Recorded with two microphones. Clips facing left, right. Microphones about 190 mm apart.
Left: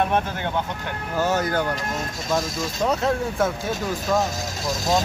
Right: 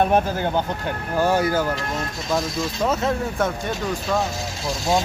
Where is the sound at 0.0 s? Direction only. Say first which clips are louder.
Right 4 dB; 35° right (ahead or behind).